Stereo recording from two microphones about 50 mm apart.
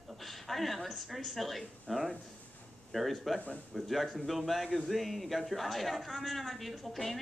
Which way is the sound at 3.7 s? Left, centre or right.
Centre.